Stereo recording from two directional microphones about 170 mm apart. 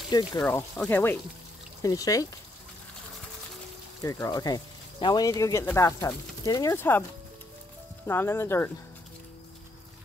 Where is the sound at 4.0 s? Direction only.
20° left (ahead or behind).